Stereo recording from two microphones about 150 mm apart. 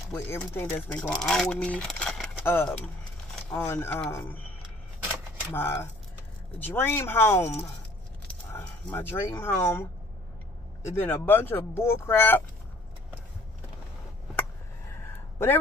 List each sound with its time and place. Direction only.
0.1 s speech: 15° left (ahead or behind)
5.5 s speech: 15° left (ahead or behind)
8.9 s speech: 15° left (ahead or behind)
15.3 s a man's voice: 15° left (ahead or behind)